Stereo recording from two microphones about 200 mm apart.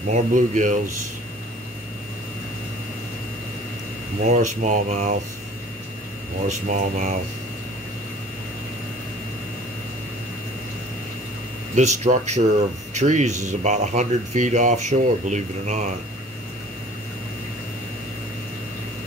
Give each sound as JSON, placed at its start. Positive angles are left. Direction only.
{"t": 0.1, "sound": "speech", "side_deg": -40}
{"t": 4.3, "sound": "speech", "side_deg": -40}
{"t": 6.4, "sound": "speech", "side_deg": -35}
{"t": 11.7, "sound": "speech", "side_deg": -35}